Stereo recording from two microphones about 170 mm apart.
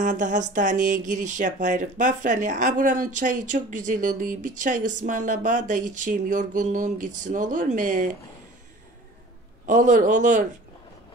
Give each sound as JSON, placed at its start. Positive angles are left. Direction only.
{"t": 0.0, "sound": "speech", "side_deg": -50}
{"t": 9.7, "sound": "speech", "side_deg": -50}